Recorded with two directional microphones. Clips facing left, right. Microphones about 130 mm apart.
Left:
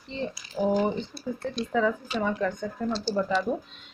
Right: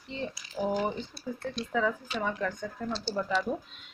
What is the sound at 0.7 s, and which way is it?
Speech, 35° left (ahead or behind).